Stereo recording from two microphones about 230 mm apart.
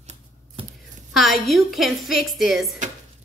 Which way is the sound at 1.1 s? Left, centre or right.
Centre.